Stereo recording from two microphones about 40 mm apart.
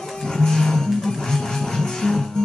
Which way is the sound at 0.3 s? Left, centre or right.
Centre.